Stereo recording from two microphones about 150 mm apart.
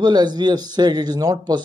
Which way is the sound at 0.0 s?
30° right (ahead or behind).